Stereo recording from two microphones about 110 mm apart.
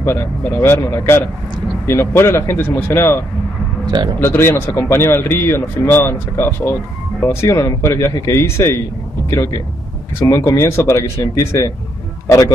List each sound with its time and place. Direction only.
0.0 s a man's voice: 20° left (ahead or behind)
4.2 s a man's voice: 20° left (ahead or behind)